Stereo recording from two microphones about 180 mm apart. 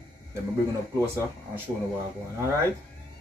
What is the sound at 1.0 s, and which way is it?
Speech, 15° right (ahead or behind).